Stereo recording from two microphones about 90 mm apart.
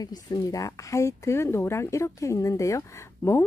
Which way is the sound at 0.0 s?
45° left (ahead or behind).